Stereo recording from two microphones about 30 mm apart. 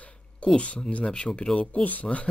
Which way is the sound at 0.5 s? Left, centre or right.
Left.